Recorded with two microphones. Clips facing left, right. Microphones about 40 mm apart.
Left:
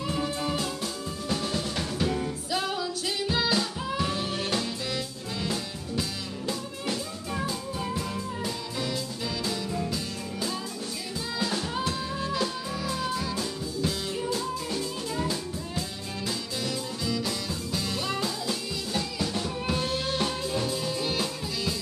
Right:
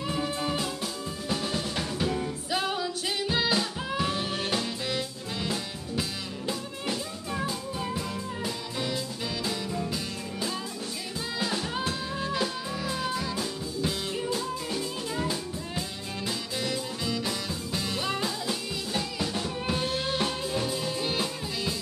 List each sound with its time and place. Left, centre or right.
0.0 s music: centre
1.3 s drum: centre
2.5 s music: centre
11.3 s music: centre